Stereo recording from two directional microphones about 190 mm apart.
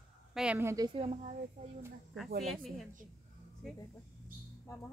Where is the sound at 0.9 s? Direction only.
30° right (ahead or behind).